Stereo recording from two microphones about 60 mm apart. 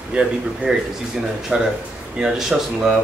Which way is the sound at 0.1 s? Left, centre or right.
Centre.